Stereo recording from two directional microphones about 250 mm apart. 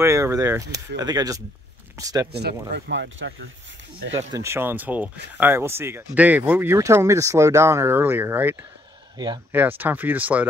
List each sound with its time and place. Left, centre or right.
0.0 s speech: centre
2.7 s speech: right
4.1 s speech: centre